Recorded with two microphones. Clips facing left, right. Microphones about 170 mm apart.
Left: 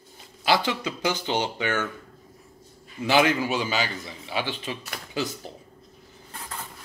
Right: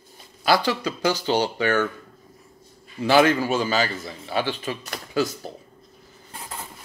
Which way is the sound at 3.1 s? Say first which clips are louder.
Right 4 dB; 15° left (ahead or behind).